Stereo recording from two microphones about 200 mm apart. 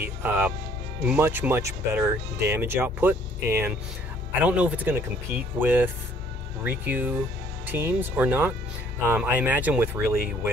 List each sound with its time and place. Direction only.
0.0 s speech: 10° right (ahead or behind)